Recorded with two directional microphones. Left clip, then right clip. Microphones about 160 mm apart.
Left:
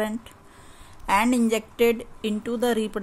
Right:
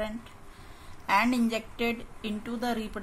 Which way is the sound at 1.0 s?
55° left (ahead or behind).